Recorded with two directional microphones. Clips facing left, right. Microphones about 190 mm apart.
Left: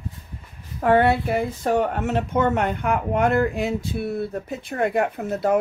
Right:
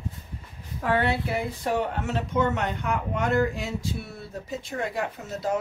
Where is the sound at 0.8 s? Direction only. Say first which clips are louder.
Left 7 dB; 50° left (ahead or behind).